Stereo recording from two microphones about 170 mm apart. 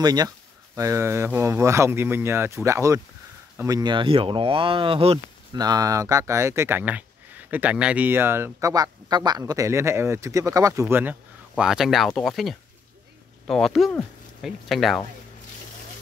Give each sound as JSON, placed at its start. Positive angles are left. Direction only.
{"t": 0.0, "sound": "speech", "side_deg": -25}
{"t": 5.5, "sound": "speech", "side_deg": -25}